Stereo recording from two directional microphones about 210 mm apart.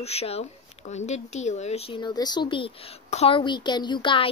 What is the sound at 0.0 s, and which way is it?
Speech, 30° left (ahead or behind).